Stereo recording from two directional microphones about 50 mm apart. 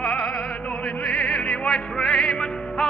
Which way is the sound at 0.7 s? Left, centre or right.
Centre.